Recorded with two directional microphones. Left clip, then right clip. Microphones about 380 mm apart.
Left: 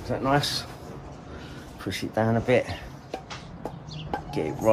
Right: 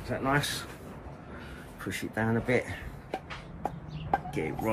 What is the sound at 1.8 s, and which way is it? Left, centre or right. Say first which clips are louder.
Speech: left 6 dB; centre.